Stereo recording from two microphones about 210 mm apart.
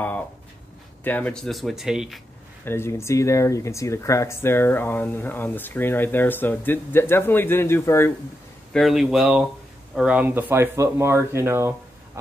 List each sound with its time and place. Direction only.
1.0 s speech: 10° left (ahead or behind)
2.6 s speech: 10° left (ahead or behind)
8.7 s speech: centre (ahead or behind)